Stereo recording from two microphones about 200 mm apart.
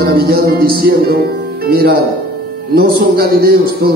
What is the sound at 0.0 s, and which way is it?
A man's voice, 50° right (ahead or behind).